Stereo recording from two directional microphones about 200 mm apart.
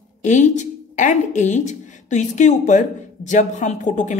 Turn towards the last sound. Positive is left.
turn(degrees=40)  # may be behind; listen again after turning